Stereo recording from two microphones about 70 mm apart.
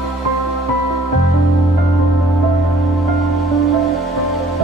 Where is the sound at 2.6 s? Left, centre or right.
Centre.